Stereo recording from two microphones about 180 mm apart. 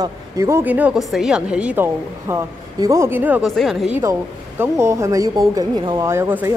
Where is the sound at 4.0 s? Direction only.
15° right (ahead or behind).